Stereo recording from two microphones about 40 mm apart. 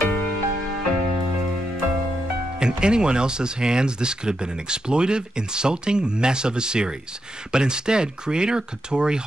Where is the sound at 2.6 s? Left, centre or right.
Right.